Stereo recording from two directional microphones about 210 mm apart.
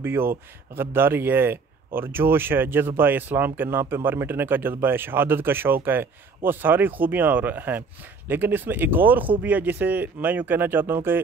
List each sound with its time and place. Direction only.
0.0 s speech: 10° right (ahead or behind)